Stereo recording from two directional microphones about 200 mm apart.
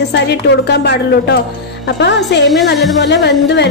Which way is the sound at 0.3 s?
55° left (ahead or behind).